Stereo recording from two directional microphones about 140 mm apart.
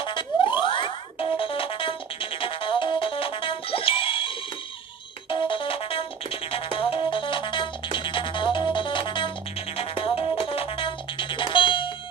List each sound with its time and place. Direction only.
0.0 s music: 35° left (ahead or behind)
5.3 s music: 40° left (ahead or behind)